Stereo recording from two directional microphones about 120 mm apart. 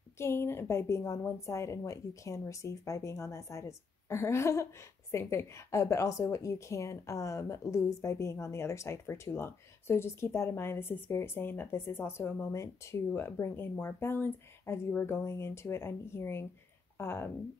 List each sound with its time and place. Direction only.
0.2 s a woman's voice: 20° left (ahead or behind)